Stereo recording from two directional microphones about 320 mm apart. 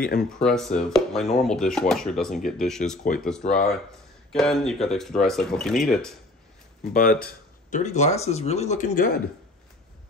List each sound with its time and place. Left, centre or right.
0.3 s speech: centre
6.9 s speech: left